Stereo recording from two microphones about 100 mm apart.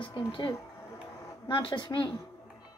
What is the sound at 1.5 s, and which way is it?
Speech, 55° left (ahead or behind).